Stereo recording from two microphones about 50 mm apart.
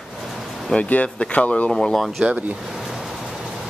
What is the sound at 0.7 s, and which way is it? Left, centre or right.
Speech, left.